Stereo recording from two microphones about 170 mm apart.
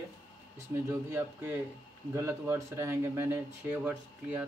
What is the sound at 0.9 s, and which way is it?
Speech, 15° right (ahead or behind).